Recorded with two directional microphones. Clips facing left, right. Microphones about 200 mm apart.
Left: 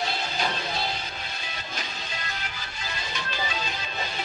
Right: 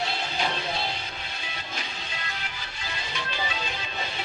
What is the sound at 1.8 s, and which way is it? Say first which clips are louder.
Music: left 1 dB; 40° left (ahead or behind).